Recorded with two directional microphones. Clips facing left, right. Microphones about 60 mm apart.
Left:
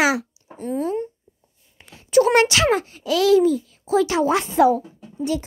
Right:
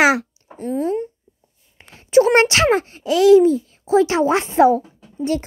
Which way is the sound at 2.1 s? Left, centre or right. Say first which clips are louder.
Right 2 dB; right.